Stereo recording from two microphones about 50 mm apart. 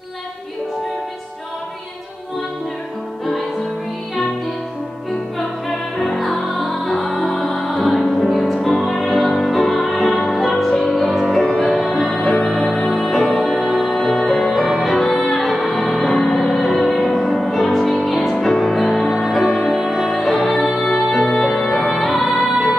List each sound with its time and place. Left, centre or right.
5.7 s music: centre
19.4 s music: centre
19.8 s music: centre